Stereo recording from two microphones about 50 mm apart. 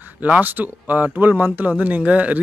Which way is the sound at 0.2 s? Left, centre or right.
Right.